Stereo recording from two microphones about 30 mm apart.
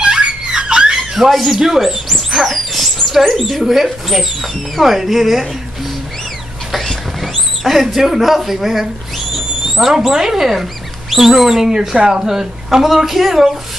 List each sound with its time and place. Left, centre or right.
0.6 s a sound: right
1.1 s speech: centre
7.2 s rodents: centre
7.8 s speech: centre
10.5 s speech: centre